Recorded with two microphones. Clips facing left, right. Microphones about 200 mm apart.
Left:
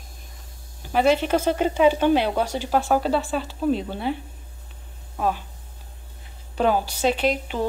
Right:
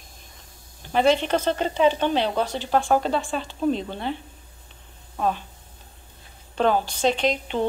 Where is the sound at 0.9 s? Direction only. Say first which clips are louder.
Left 1 dB; 5° left (ahead or behind).